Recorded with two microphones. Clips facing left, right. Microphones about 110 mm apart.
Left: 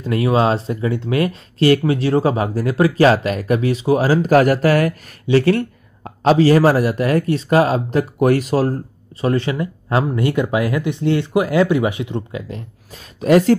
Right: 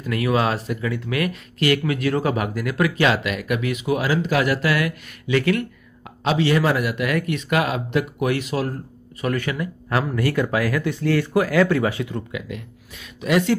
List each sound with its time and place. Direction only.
0.0 s speech: 30° left (ahead or behind)